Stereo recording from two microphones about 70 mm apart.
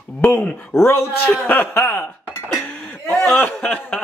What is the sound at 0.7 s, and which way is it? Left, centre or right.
Speech, left.